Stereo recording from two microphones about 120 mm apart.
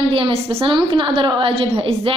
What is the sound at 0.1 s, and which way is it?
A woman's voice, 50° right (ahead or behind).